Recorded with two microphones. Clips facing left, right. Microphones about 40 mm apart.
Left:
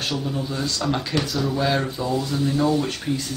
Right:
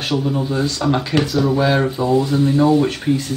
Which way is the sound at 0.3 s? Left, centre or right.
Right.